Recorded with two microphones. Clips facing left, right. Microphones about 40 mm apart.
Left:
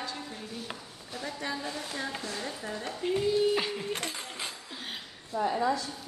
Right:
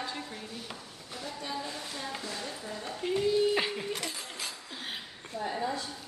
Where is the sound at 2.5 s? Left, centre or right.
Centre.